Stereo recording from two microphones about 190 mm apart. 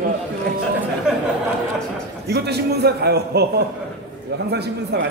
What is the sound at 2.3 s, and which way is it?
A man's voice, 60° right (ahead or behind).